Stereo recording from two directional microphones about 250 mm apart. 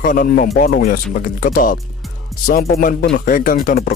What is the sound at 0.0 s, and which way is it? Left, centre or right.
A man's voice, left.